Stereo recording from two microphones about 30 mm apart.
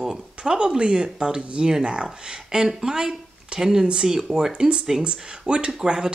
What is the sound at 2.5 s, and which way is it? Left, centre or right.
Speech, centre.